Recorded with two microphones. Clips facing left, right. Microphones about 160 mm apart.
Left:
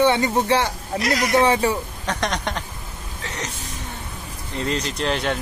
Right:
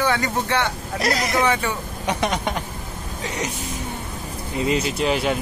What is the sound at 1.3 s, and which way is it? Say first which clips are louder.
Speech: left 7 dB; 30° left (ahead or behind).